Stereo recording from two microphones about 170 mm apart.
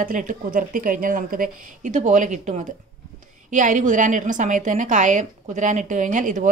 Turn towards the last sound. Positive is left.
turn(degrees=-50)  # may be behind; listen again after turning